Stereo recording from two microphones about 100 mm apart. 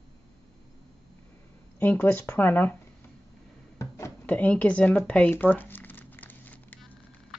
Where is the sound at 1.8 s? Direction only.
20° left (ahead or behind).